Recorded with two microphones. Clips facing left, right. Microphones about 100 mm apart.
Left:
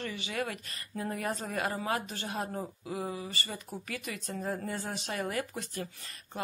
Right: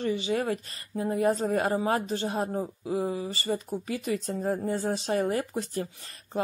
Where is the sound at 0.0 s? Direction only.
30° right (ahead or behind).